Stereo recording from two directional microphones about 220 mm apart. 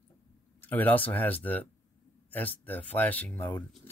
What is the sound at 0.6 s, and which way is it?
Speech, 10° left (ahead or behind).